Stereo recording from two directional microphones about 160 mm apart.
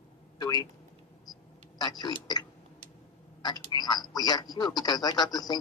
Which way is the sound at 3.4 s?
25° left (ahead or behind).